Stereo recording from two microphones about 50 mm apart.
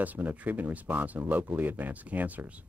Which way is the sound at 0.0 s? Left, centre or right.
Right.